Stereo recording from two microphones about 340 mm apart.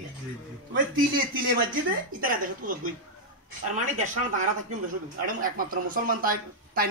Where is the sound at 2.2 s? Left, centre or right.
Right.